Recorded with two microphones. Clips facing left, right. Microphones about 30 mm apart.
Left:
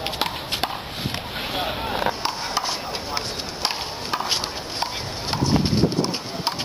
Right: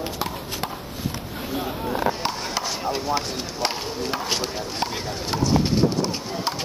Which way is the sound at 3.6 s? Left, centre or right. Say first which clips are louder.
Even; centre.